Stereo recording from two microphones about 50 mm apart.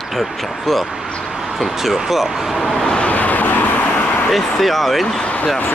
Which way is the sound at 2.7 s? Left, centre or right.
Centre.